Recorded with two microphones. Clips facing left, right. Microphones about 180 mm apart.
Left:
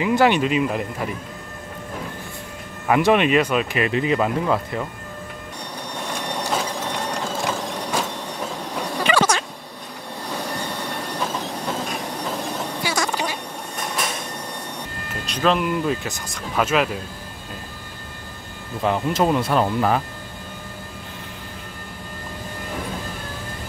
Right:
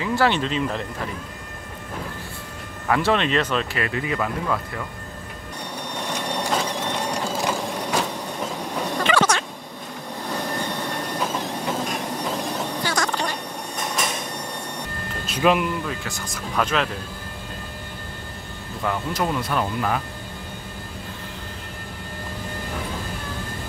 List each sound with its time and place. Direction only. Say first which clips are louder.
0.0 s speech: left 4 dB; 15° left (ahead or behind)
2.9 s speech: left 4 dB; 15° left (ahead or behind)
6.0 s a sound: right 1 dB; centre (ahead or behind)
6.7 s mechanisms: right 1 dB; 10° left (ahead or behind)
7.2 s mechanisms: right 1 dB; 10° right (ahead or behind)
9.0 s a sound: left 1 dB; 10° left (ahead or behind)
11.1 s train: even; 10° right (ahead or behind)
12.4 s a sound: right 1 dB; 10° left (ahead or behind)
15.2 s speech: right 1 dB; 10° right (ahead or behind)
15.9 s speech: left 6 dB; 20° left (ahead or behind)
16.5 s speech: left 3 dB; 10° left (ahead or behind)
18.8 s speech: left 5 dB; 25° left (ahead or behind)